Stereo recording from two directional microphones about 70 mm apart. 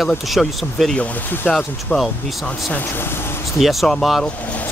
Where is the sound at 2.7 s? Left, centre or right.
Left.